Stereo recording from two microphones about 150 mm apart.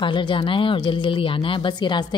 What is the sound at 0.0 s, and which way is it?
Speech, 30° left (ahead or behind).